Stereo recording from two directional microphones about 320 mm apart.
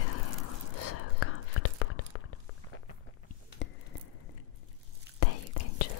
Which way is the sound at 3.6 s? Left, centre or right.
Left.